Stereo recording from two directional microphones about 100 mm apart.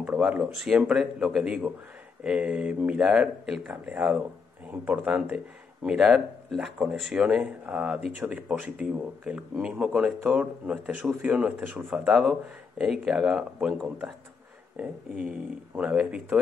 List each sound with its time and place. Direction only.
0.0 s speech: 15° right (ahead or behind)
5.9 s speech: 5° right (ahead or behind)
14.8 s speech: 10° right (ahead or behind)